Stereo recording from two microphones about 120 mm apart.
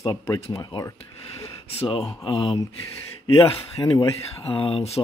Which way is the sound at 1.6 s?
55° left (ahead or behind).